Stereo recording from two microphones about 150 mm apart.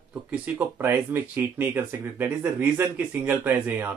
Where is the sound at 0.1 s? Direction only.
10° right (ahead or behind).